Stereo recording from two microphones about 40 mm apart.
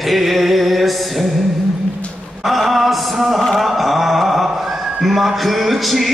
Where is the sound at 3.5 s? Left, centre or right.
Centre.